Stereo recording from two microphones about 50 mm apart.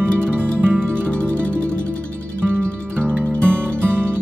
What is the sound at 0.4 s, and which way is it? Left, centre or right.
Music, right.